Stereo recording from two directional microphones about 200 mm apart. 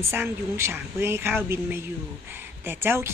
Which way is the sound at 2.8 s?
10° right (ahead or behind).